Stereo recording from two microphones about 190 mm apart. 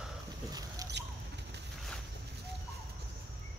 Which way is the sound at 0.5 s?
20° right (ahead or behind).